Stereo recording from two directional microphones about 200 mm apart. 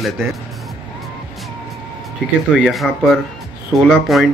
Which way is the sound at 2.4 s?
Centre (ahead or behind).